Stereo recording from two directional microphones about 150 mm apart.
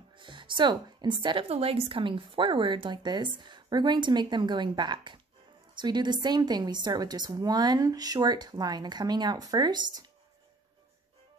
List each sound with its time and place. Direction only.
0.2 s a woman's voice: 35° right (ahead or behind)